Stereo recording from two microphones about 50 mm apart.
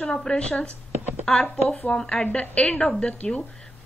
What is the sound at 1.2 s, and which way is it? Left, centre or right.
Speech, centre.